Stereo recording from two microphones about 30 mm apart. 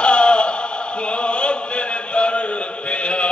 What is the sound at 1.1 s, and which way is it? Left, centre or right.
Chant, left.